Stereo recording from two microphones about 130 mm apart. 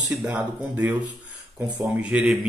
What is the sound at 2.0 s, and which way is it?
Speech, 10° right (ahead or behind).